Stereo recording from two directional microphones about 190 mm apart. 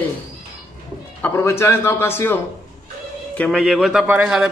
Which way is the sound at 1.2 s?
15° left (ahead or behind).